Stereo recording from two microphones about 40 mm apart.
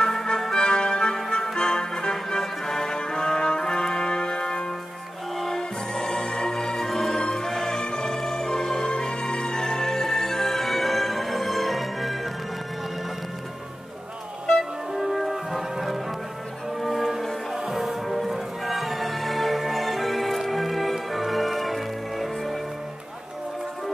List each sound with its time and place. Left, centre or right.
0.0 s music: centre
7.5 s music: centre
7.8 s music: centre
15.0 s music: centre